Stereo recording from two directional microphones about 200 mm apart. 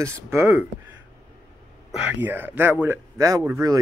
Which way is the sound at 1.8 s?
10° right (ahead or behind).